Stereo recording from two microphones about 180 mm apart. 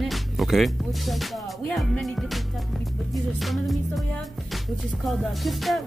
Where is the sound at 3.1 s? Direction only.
Centre (ahead or behind).